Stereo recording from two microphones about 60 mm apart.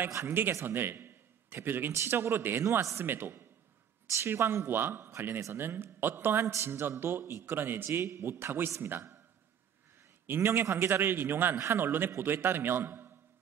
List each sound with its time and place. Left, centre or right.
0.2 s a man's voice: right
2.6 s speech: right
3.0 s a man's voice: right
4.6 s a man's voice: right
10.2 s a man's voice: right